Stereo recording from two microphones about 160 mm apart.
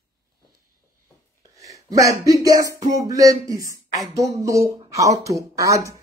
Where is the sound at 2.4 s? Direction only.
20° right (ahead or behind).